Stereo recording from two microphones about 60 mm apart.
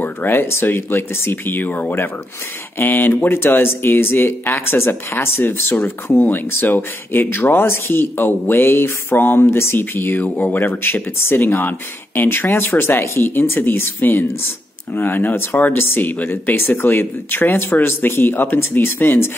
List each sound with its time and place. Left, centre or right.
0.0 s speech: left
10.6 s speech: left